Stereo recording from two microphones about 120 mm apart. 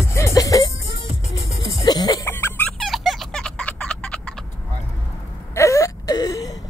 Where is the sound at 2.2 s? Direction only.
20° left (ahead or behind).